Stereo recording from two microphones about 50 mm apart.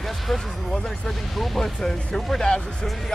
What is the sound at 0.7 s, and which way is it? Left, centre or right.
Speech, centre.